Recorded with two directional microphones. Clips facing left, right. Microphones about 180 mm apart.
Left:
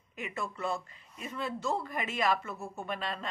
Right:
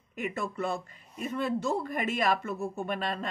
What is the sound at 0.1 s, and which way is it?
A woman's voice, 50° right (ahead or behind).